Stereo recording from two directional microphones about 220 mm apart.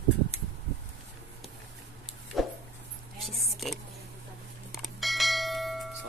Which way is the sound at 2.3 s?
Centre (ahead or behind).